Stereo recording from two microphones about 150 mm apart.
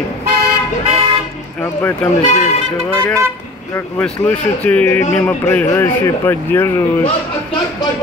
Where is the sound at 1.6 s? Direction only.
15° left (ahead or behind).